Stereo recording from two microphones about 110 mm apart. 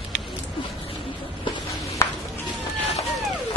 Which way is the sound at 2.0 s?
25° left (ahead or behind).